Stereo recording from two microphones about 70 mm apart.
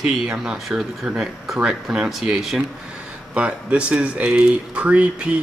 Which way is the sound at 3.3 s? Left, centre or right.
Centre.